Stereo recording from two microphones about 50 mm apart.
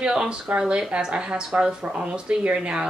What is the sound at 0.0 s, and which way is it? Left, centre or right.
Speech, centre.